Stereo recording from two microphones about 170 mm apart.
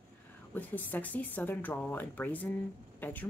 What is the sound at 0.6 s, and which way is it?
A woman's voice, 10° left (ahead or behind).